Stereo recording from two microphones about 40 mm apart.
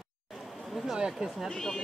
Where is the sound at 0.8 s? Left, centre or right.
Centre.